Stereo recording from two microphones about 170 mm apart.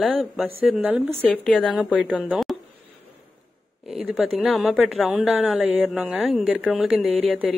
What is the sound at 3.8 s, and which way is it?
Speech, 5° right (ahead or behind).